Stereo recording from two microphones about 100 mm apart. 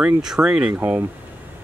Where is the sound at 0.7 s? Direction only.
20° right (ahead or behind).